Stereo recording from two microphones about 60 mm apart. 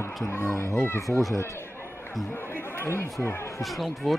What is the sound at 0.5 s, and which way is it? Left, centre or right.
Speech, left.